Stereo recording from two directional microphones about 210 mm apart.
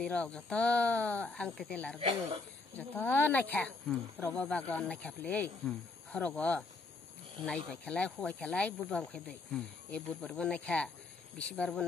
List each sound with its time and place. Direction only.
0.0 s speech: 5° left (ahead or behind)
2.0 s speech: 25° right (ahead or behind)
2.7 s speech: 10° left (ahead or behind)